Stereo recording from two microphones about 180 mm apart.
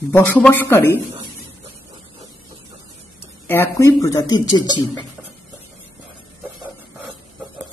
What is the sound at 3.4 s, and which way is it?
Speech, 15° left (ahead or behind).